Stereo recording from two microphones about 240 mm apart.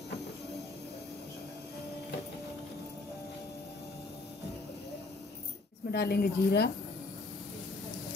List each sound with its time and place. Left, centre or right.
5.9 s a woman's voice: left